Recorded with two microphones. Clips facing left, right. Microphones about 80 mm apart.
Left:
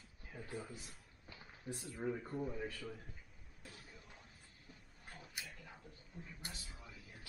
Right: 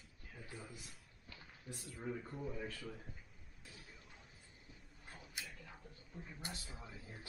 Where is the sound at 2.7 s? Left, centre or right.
Centre.